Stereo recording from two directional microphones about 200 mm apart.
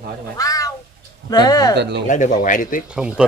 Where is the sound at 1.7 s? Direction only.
55° right (ahead or behind).